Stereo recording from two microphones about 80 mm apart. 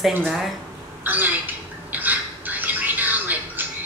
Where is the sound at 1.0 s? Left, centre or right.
Right.